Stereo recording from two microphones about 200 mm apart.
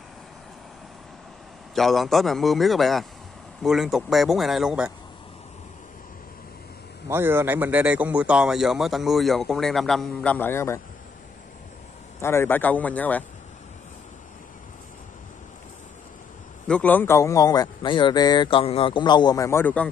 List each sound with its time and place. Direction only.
1.8 s a man's voice: centre (ahead or behind)
7.1 s a man's voice: 10° right (ahead or behind); by 10.8 s 10° left (ahead or behind)
12.2 s speech: 10° left (ahead or behind)
16.6 s a man's voice: 5° left (ahead or behind)